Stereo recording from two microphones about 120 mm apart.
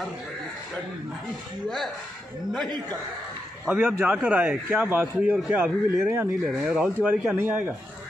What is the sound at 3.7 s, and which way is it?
A man's voice, 10° right (ahead or behind).